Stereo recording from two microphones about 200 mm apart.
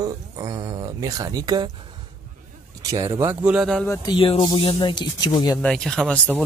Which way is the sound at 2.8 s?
15° right (ahead or behind).